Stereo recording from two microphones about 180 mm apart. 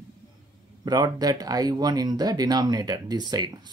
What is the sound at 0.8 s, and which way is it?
Speech, 20° right (ahead or behind).